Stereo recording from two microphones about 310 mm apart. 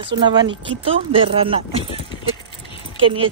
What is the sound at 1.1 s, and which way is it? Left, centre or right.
Speech, centre.